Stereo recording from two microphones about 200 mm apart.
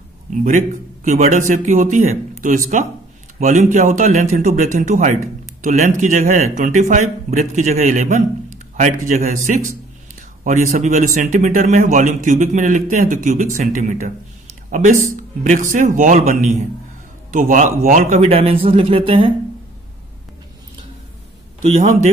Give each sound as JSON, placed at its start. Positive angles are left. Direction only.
{"t": 0.3, "sound": "speech", "side_deg": -40}
{"t": 10.4, "sound": "speech", "side_deg": -40}
{"t": 21.5, "sound": "speech", "side_deg": -35}